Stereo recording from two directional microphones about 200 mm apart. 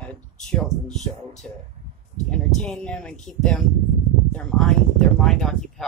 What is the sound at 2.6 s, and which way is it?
Speech, 5° left (ahead or behind).